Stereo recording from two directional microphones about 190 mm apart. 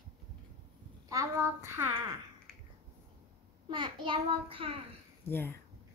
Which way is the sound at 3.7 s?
25° right (ahead or behind).